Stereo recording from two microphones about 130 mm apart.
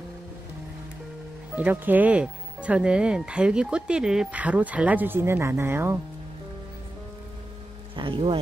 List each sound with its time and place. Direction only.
1.5 s speech: 10° right (ahead or behind)
7.9 s speech: 40° right (ahead or behind)